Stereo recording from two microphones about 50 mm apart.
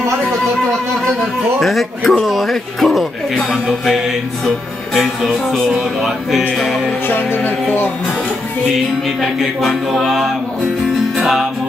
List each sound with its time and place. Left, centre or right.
1.6 s speech: centre
4.9 s speech: centre
7.1 s music: left
9.2 s speech: centre
11.1 s music: centre